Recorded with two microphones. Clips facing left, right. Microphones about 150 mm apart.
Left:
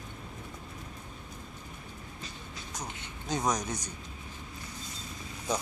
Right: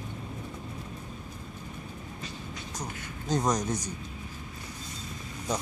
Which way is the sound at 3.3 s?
Centre (ahead or behind).